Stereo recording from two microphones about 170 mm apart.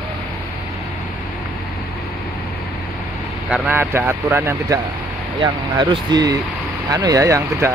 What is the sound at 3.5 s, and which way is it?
Speech, 10° right (ahead or behind).